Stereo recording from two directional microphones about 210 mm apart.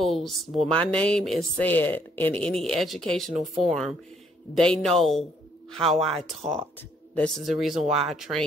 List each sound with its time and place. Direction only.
0.0 s speech: centre (ahead or behind)
7.8 s speech: 30° right (ahead or behind)
8.1 s speech: centre (ahead or behind)